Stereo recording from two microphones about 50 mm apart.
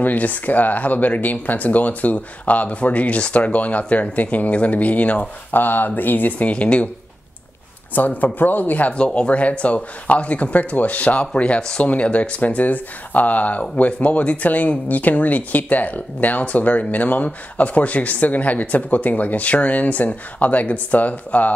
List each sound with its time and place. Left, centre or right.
0.0 s speech: left
5.5 s speech: left
7.9 s speech: left
8.9 s speech: left